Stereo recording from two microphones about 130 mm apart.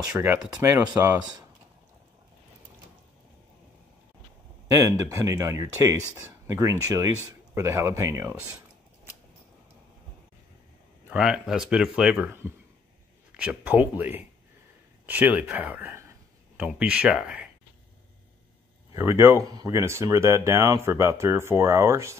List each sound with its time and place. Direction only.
0.1 s speech: 15° right (ahead or behind)
4.7 s speech: 25° right (ahead or behind)
11.1 s speech: 5° right (ahead or behind)
13.3 s speech: 10° right (ahead or behind)
16.5 s speech: 10° right (ahead or behind)
18.9 s speech: 20° right (ahead or behind)